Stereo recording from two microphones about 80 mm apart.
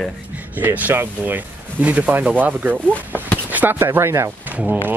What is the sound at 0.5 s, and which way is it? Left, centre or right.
Speech, right.